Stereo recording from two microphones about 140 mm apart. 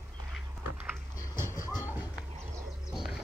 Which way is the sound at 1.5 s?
20° left (ahead or behind).